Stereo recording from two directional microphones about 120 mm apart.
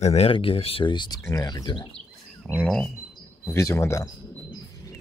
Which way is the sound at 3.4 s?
25° left (ahead or behind).